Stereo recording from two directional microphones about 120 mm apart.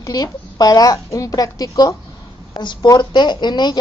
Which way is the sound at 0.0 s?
30° left (ahead or behind).